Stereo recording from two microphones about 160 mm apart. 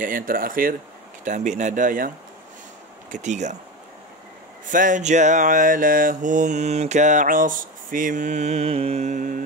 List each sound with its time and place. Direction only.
0.0 s speech: 60° right (ahead or behind)
1.2 s mantra: 50° right (ahead or behind)
4.6 s mantra: 55° right (ahead or behind)